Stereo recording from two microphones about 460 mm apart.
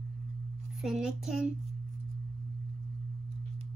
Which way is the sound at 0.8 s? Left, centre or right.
Centre.